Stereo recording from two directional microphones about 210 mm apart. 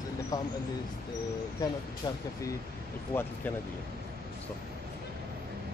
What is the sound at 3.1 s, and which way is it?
Speech, 10° left (ahead or behind).